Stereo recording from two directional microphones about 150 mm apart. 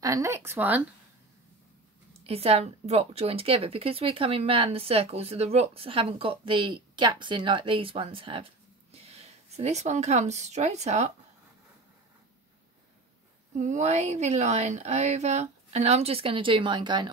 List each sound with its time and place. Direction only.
0.0 s speech: 20° right (ahead or behind)
2.2 s speech: 40° right (ahead or behind)
13.6 s speech: 55° right (ahead or behind); by 17.1 s 30° right (ahead or behind)